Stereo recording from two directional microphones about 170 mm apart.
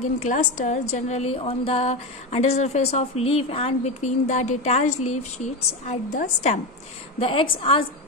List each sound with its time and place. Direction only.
0.2 s a woman's voice: 50° left (ahead or behind)
7.2 s a woman's voice: 30° left (ahead or behind)